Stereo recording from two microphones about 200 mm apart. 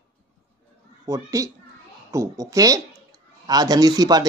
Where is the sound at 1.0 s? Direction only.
15° right (ahead or behind).